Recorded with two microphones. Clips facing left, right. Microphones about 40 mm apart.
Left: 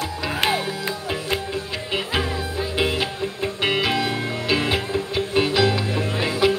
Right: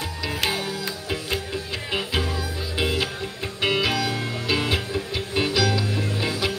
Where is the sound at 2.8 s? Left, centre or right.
Left.